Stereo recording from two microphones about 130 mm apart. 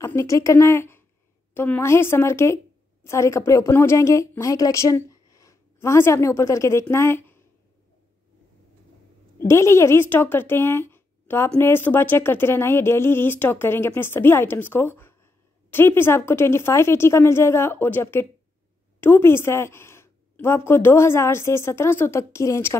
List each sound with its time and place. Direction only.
0.0 s a woman's voice: 20° left (ahead or behind)
9.5 s a woman's voice: 20° left (ahead or behind)